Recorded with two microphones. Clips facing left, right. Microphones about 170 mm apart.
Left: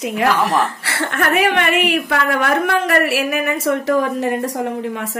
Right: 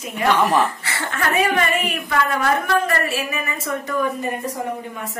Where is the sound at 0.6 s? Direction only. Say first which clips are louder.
Left 1 dB; 70° left (ahead or behind).